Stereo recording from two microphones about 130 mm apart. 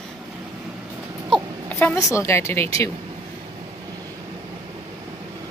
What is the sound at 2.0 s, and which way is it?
Speech, 25° left (ahead or behind).